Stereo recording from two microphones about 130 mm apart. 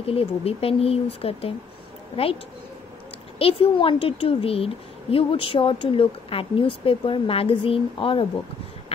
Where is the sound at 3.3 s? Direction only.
45° left (ahead or behind).